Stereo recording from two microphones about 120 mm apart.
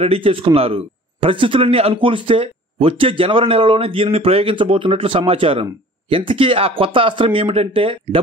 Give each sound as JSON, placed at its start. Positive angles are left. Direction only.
{"t": 0.0, "sound": "speech", "side_deg": -50}